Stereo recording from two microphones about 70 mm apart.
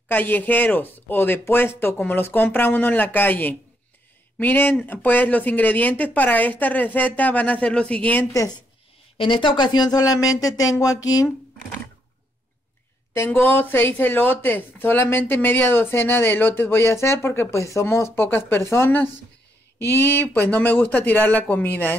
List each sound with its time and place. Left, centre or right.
0.1 s speech: left
9.6 s speech: left
13.1 s speech: left
13.5 s speech: left